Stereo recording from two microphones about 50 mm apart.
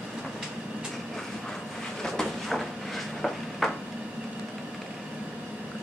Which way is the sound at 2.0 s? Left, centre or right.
Centre.